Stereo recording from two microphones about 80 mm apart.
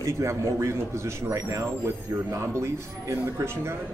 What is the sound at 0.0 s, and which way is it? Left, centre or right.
Speech, right.